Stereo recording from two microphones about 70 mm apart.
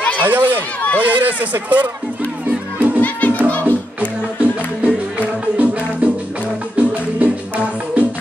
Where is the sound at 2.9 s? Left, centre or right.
Left.